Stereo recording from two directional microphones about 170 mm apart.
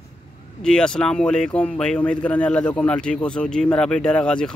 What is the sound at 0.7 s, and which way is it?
Speech, 5° left (ahead or behind).